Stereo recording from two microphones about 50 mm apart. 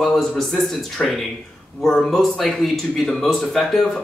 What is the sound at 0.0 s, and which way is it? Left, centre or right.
A man's voice, centre.